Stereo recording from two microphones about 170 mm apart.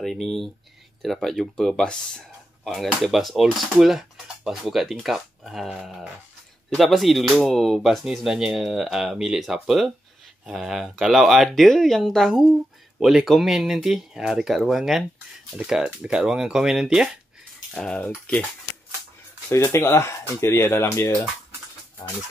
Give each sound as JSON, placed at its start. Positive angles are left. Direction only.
{"t": 0.0, "sound": "speech", "side_deg": 0}
{"t": 19.5, "sound": "speech", "side_deg": 15}